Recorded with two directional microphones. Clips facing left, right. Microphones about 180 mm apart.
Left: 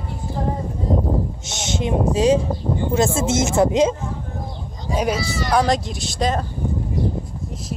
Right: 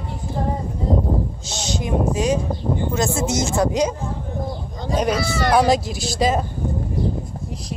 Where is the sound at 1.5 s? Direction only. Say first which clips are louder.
Left 2 dB; 20° left (ahead or behind).